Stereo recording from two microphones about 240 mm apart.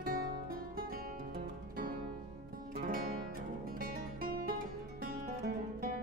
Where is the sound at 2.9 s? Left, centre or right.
Right.